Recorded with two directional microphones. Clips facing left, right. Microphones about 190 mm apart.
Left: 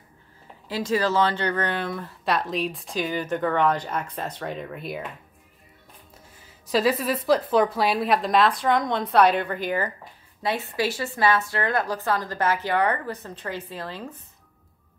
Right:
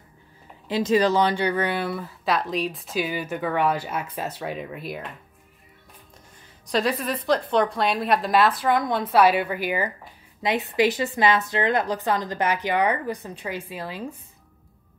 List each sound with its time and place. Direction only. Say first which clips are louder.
0.7 s speech: right 4 dB; 20° right (ahead or behind); by 5.0 s centre (ahead or behind)
6.7 s a woman's voice: left 2 dB; 5° left (ahead or behind)